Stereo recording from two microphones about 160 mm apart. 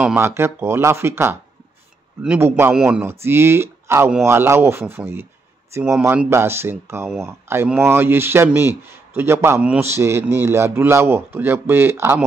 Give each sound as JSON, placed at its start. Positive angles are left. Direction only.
{"t": 0.0, "sound": "speech", "side_deg": -10}
{"t": 2.7, "sound": "a man's voice", "side_deg": -5}
{"t": 3.1, "sound": "speech", "side_deg": -15}